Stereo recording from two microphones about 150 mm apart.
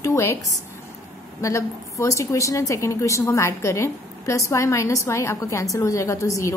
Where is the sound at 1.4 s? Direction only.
20° left (ahead or behind).